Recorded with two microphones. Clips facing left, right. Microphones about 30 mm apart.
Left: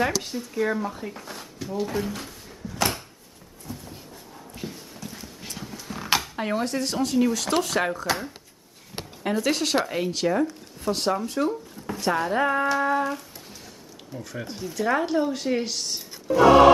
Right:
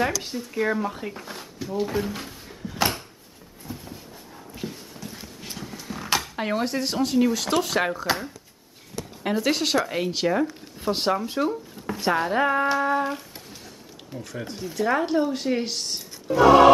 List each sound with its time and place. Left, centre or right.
0.2 s speech: centre
2.8 s a sound: centre
4.6 s horse: centre
6.3 s speech: centre
9.2 s speech: centre
13.0 s a sound: centre
14.1 s speech: centre